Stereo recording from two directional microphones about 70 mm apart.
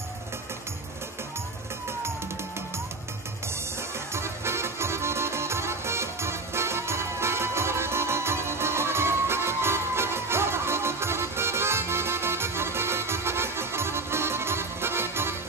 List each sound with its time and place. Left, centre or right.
4.1 s music: right